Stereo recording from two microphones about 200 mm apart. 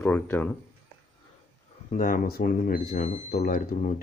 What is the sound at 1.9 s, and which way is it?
Speech, 40° left (ahead or behind).